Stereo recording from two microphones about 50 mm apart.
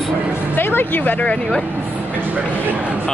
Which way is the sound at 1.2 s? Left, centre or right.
Left.